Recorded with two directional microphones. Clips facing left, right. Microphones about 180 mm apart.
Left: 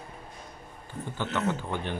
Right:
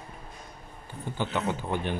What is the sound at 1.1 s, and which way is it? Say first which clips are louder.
Speech: even; 15° right (ahead or behind).